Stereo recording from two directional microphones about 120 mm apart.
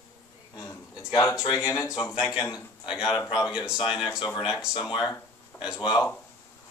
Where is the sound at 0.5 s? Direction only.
30° left (ahead or behind).